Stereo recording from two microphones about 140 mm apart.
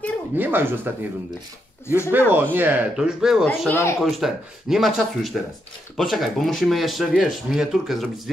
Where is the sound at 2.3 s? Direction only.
15° right (ahead or behind).